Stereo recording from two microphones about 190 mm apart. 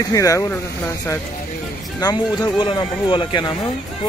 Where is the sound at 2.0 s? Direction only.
20° left (ahead or behind).